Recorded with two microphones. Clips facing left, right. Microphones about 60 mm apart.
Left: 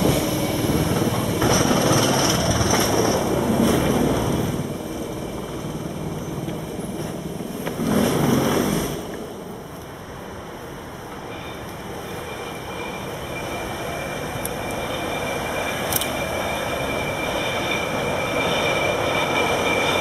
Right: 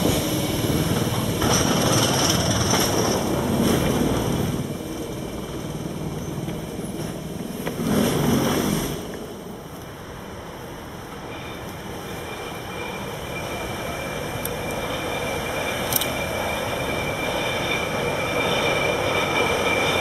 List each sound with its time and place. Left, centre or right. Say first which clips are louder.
0.4 s vehicle: left 2 dB; left
3.2 s boat: left 2 dB; centre
7.8 s vehicle: left 2 dB; centre
15.0 s vehicle: left 1 dB; centre
16.7 s train: left 1 dB; centre